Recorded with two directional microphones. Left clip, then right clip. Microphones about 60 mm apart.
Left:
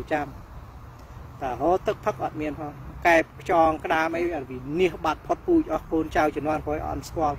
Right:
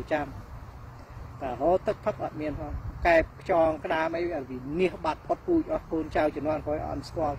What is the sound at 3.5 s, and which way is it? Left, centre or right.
Speech, right.